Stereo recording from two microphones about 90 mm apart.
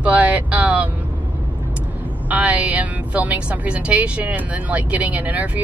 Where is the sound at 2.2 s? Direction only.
15° right (ahead or behind).